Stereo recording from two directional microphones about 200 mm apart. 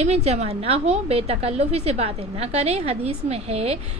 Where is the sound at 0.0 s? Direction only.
35° right (ahead or behind).